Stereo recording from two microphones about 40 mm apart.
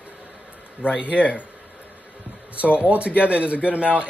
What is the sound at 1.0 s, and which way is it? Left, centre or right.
Speech, left.